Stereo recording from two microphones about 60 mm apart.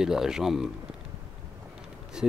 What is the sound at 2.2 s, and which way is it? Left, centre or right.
Speech, centre.